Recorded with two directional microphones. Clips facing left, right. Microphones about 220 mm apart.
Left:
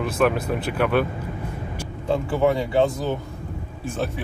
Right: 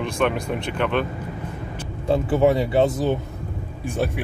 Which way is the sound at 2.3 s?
20° right (ahead or behind).